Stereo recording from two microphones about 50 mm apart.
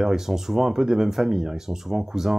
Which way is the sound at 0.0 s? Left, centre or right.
Centre.